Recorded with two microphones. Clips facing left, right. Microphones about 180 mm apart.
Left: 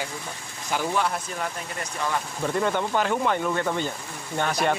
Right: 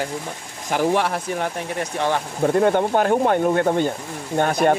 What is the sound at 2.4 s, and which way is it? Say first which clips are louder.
Speech: right 8 dB; 50° right (ahead or behind).